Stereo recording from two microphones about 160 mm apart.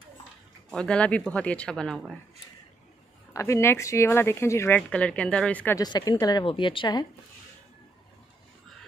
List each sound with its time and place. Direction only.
0.7 s speech: 5° left (ahead or behind)
3.3 s speech: 20° left (ahead or behind)
5.8 s a woman's voice: 25° left (ahead or behind)